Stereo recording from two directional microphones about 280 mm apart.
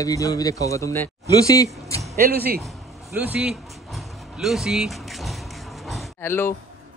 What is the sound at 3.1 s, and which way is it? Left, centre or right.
Dog, centre.